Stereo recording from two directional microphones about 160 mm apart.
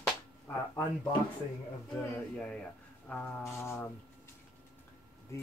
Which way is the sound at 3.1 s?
10° left (ahead or behind).